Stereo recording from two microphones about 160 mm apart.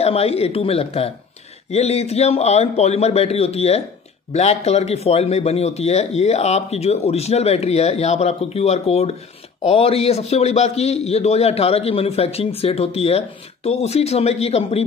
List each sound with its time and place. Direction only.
0.0 s a man's voice: 40° left (ahead or behind)